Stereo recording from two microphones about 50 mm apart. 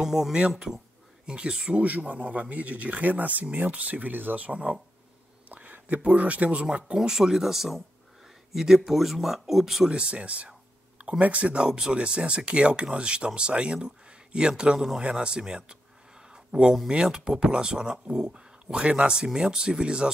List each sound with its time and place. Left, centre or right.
0.0 s speech: centre
1.2 s speech: centre
1.8 s speech: right
6.9 s speech: centre
9.8 s speech: right
11.5 s speech: centre
16.9 s speech: centre